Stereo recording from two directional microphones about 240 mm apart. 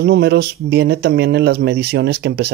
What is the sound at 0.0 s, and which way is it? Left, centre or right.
Speech, right.